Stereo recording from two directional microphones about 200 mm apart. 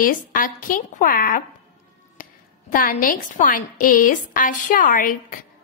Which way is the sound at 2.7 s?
45° left (ahead or behind).